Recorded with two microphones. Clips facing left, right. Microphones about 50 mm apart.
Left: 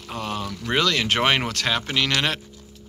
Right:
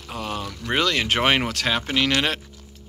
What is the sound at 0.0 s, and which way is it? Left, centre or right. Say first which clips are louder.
Speech: left 1 dB; centre.